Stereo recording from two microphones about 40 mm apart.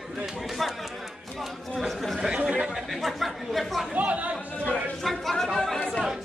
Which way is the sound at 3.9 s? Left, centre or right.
Right.